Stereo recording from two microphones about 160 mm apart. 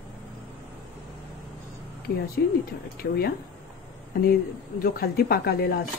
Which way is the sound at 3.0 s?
75° left (ahead or behind).